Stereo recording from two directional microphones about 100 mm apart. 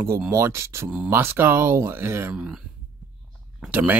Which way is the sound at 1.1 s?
25° right (ahead or behind).